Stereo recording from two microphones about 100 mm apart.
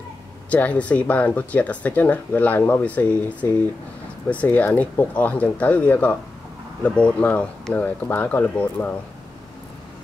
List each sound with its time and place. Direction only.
0.5 s speech: 15° left (ahead or behind)